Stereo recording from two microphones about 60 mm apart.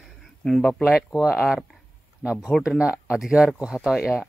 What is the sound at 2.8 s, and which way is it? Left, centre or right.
Speech, right.